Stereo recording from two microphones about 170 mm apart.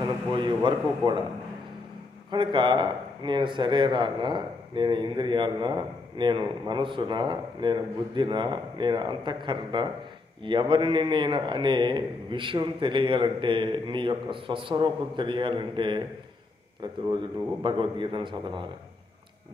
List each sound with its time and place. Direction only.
0.3 s a man's voice: 25° right (ahead or behind)
2.3 s a man's voice: 30° right (ahead or behind)
17.1 s a man's voice: 30° right (ahead or behind)